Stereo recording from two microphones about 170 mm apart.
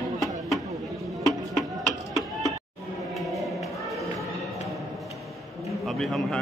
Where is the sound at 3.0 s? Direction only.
Centre (ahead or behind).